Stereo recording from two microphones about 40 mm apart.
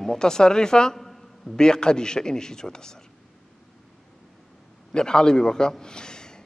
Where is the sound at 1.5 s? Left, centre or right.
Centre.